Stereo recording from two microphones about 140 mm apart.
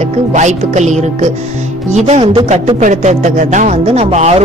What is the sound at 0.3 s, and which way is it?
A woman's voice, 60° right (ahead or behind).